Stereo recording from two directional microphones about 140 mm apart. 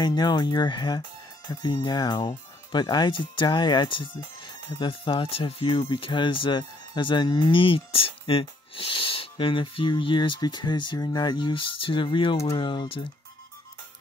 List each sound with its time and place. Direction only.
0.0 s speech: 30° left (ahead or behind)